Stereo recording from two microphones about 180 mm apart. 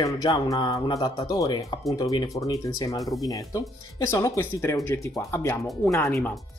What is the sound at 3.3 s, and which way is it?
Speech, 20° left (ahead or behind).